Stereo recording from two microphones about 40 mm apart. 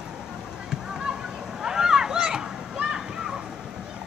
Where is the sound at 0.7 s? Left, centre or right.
Centre.